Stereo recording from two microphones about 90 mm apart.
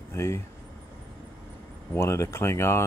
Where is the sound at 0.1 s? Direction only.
30° left (ahead or behind).